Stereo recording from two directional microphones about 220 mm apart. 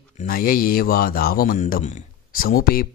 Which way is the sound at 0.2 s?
40° left (ahead or behind).